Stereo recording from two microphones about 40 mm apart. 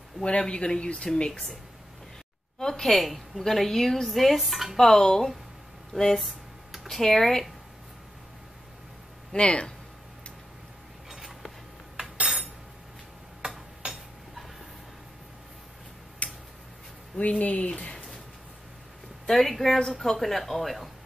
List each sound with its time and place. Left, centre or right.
0.2 s speech: left
2.6 s a woman's voice: centre
4.7 s speech: centre
6.1 s computer keyboard: centre
7.0 s speech: centre
9.3 s speech: left
11.1 s a sound: centre
16.2 s tick-tock: left
17.2 s speech: left
19.2 s a woman's voice: centre